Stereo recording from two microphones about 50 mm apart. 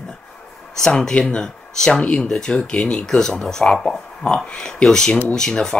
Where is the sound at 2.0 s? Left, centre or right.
Left.